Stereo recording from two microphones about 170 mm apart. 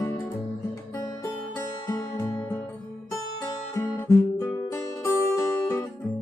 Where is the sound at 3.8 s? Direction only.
15° left (ahead or behind).